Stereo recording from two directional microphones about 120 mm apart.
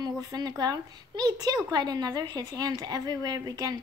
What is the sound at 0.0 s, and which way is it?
A woman's voice, 35° right (ahead or behind).